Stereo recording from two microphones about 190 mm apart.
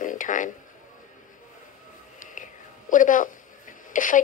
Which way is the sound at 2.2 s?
45° left (ahead or behind).